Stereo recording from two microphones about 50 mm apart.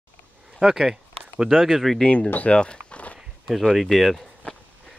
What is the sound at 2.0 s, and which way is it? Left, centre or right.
Speech, left.